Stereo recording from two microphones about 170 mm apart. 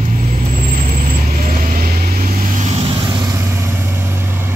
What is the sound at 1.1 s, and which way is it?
Vehicle, 55° right (ahead or behind).